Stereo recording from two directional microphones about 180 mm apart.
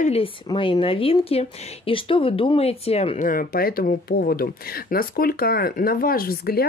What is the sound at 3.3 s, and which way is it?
Speech, 55° left (ahead or behind).